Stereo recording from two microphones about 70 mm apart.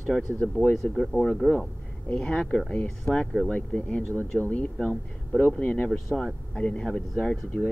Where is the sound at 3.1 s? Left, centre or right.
Left.